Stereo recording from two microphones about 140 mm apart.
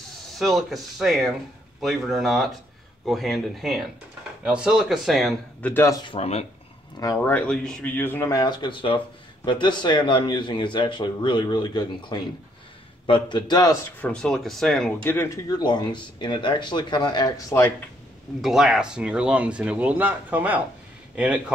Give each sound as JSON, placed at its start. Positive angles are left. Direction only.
{"t": 0.4, "sound": "speech", "side_deg": 0}
{"t": 5.6, "sound": "speech", "side_deg": 15}
{"t": 6.0, "sound": "speech", "side_deg": 45}
{"t": 7.2, "sound": "speech", "side_deg": 10}
{"t": 8.4, "sound": "speech", "side_deg": 30}
{"t": 14.0, "sound": "speech", "side_deg": 5}
{"t": 15.0, "sound": "speech", "side_deg": 20}
{"t": 18.4, "sound": "speech", "side_deg": 0}